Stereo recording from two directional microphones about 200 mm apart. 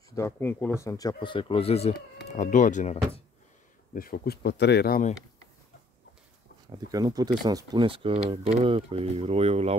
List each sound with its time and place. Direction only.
0.1 s speech: 10° left (ahead or behind); by 5.1 s 45° left (ahead or behind)
6.7 s speech: 20° right (ahead or behind)